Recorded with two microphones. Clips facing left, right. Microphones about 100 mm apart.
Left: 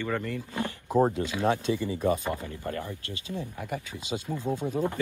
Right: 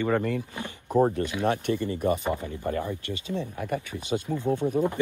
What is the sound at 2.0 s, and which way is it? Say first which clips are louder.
A man's voice: right 1 dB; 15° right (ahead or behind).